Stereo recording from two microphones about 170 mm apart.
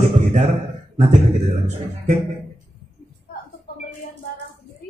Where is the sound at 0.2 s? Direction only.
45° right (ahead or behind).